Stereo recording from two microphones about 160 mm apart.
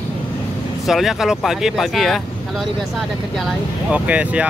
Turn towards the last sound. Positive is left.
turn(degrees=-10)  # may be behind; listen again after turning